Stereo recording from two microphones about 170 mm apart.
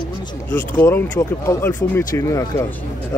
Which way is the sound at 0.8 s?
15° left (ahead or behind).